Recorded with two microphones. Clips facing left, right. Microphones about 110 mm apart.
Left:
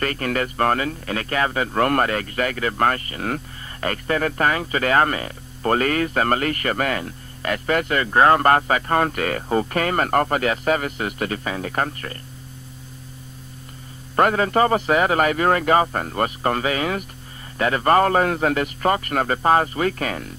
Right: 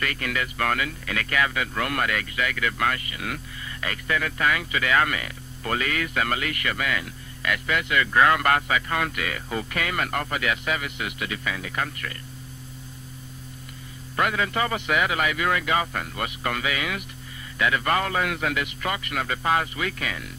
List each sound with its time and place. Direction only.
0.0 s speech: 40° left (ahead or behind)
14.1 s speech: 40° left (ahead or behind)